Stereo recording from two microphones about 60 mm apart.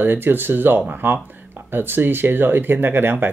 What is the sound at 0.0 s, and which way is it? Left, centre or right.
Speech, right.